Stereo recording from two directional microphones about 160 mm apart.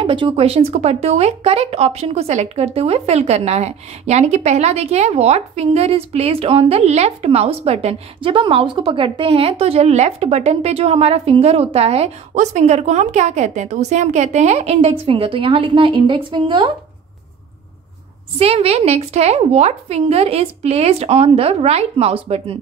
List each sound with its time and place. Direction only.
0.0 s speech: 30° right (ahead or behind)
18.4 s speech: 40° right (ahead or behind)